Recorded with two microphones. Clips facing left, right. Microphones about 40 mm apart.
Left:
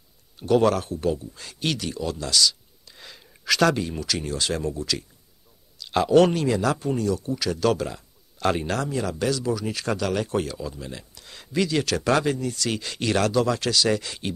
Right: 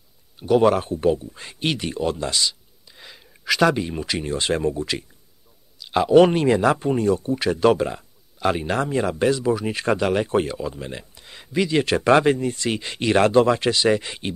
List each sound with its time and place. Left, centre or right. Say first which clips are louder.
0.4 s speech: right 3 dB; centre
2.9 s speech: right 1 dB; centre; by 5.0 s right
5.8 s a man's voice: right 3 dB; centre
6.3 s speech: right 5 dB; right
8.4 s speech: right 2 dB; centre
8.6 s speech: right 4 dB; right